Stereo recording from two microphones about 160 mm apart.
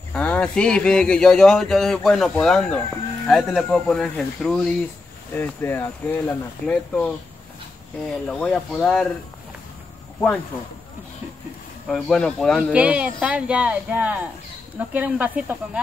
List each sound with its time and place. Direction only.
0.1 s speech: 10° left (ahead or behind)
8.3 s speech: 5° left (ahead or behind)
11.9 s speech: 5° left (ahead or behind)
12.7 s speech: 5° right (ahead or behind)